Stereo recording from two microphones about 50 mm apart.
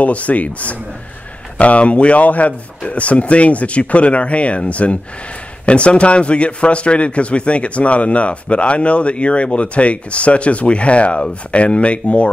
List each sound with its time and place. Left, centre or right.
0.0 s a man's voice: left